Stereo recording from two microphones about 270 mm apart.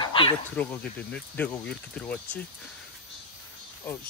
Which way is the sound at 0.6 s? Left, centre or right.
Centre.